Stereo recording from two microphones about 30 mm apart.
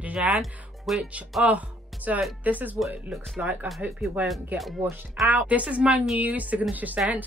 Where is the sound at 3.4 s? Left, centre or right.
Right.